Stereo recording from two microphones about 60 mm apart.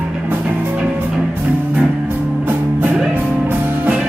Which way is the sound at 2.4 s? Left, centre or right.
Right.